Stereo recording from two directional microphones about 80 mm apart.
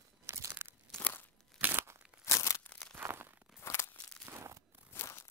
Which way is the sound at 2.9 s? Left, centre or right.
Right.